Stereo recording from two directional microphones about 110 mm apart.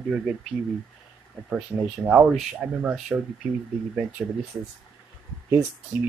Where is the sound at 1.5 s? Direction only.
10° right (ahead or behind).